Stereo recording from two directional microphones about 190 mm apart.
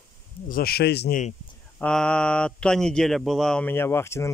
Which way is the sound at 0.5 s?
55° left (ahead or behind).